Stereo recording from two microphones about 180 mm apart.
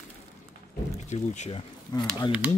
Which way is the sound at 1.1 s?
40° left (ahead or behind).